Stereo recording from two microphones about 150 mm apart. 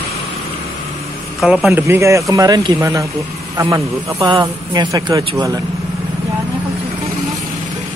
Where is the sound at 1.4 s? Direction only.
5° right (ahead or behind).